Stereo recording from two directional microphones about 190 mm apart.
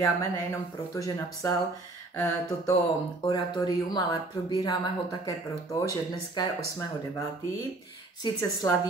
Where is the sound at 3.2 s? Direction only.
20° left (ahead or behind).